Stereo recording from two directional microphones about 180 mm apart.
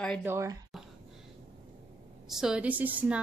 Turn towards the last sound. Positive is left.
turn(degrees=-10)  # may be behind; listen again after turning